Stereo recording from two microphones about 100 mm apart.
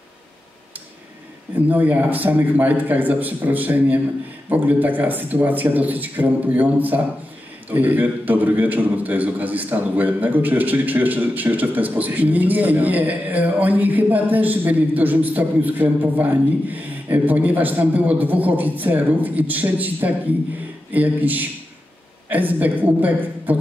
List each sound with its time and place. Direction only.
1.5 s a man's voice: 15° right (ahead or behind)